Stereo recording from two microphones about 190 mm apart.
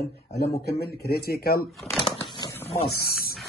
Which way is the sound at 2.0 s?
20° left (ahead or behind).